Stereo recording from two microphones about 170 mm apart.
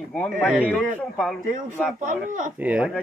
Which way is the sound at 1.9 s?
45° right (ahead or behind).